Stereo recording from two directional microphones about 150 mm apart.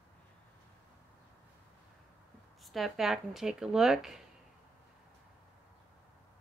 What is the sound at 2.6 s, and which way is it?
Speech, centre (ahead or behind).